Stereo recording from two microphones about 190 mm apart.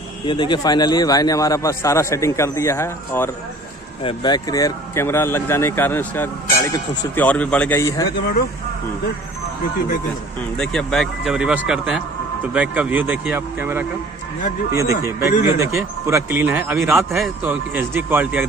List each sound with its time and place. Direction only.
0.3 s speech: 25° left (ahead or behind)
7.2 s speech: 5° left (ahead or behind)
10.6 s speech: 5° left (ahead or behind)